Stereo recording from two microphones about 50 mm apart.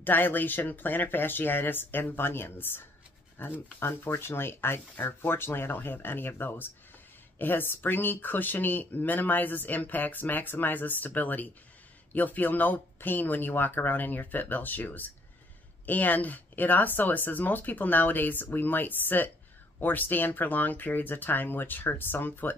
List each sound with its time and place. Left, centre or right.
0.0 s speech: left